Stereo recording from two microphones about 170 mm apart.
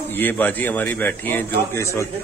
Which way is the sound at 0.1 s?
10° left (ahead or behind).